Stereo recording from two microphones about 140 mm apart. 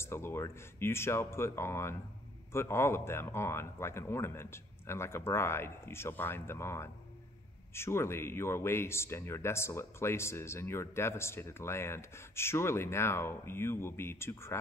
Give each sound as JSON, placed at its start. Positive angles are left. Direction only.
{"t": 0.0, "sound": "speech", "side_deg": 15}